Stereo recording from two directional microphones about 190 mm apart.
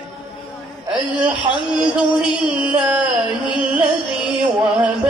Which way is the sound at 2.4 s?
5° right (ahead or behind).